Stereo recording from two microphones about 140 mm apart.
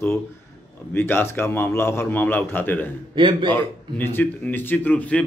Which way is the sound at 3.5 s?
15° left (ahead or behind).